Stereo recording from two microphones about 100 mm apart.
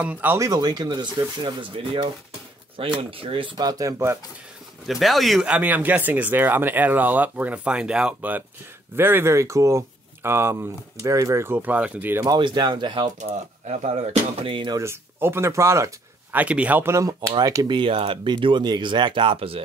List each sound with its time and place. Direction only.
0.0 s speech: 15° right (ahead or behind)
0.4 s speech: 40° right (ahead or behind); by 3.5 s 65° right (ahead or behind)
3.5 s speech: 35° right (ahead or behind)
4.8 s speech: centre (ahead or behind)
5.5 s speech: 15° right (ahead or behind)
12.4 s speech: 50° right (ahead or behind)
14.8 s speech: 25° right (ahead or behind)
16.3 s speech: 15° right (ahead or behind)
17.3 s speech: 40° right (ahead or behind)
17.7 s speech: 65° right (ahead or behind)